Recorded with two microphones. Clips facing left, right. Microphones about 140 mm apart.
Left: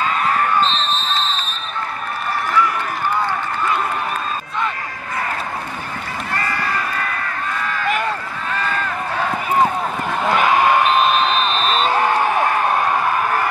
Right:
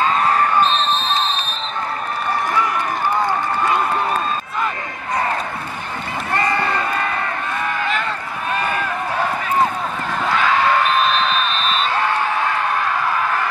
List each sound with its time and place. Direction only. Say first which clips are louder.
0.6 s basketball bounce: right 2 dB; 15° right (ahead or behind)
6.3 s run: right 4 dB; 25° right (ahead or behind)
8.5 s run: right 1 dB; 15° right (ahead or behind)
10.3 s basketball bounce: left 2 dB; 15° left (ahead or behind)
11.5 s basketball bounce: left 3 dB; 40° left (ahead or behind)